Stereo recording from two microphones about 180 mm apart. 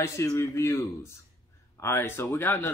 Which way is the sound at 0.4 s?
15° left (ahead or behind).